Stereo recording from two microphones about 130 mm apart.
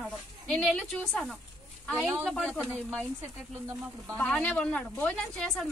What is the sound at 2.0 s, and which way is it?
Speech, 10° right (ahead or behind).